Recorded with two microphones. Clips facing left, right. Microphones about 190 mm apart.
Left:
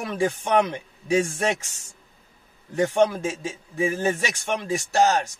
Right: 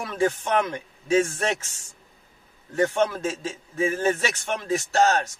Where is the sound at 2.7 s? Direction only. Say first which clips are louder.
Left 2 dB; 15° left (ahead or behind).